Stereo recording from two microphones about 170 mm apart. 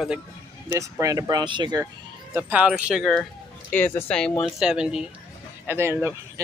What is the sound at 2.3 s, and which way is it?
Speech, 10° right (ahead or behind).